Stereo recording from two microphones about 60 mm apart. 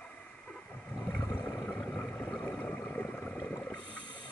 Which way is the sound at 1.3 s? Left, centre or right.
Left.